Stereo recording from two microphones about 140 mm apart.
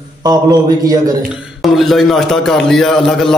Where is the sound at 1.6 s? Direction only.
Centre (ahead or behind).